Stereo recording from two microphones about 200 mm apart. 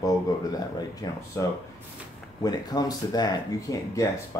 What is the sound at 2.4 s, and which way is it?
Speech, 20° left (ahead or behind).